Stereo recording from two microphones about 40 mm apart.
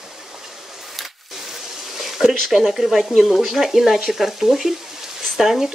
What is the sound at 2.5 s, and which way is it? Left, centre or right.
Stir, centre.